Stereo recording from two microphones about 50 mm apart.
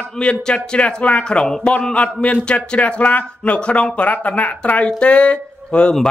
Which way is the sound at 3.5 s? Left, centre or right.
Left.